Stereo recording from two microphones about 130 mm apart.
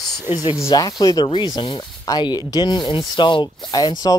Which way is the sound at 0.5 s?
25° left (ahead or behind).